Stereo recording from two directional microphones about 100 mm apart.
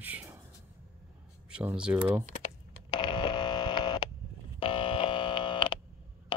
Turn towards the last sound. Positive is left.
turn(degrees=55)  # may be behind; listen again after turning